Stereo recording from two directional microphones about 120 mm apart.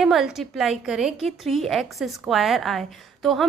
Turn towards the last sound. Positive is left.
turn(degrees=0)  # may be behind; listen again after turning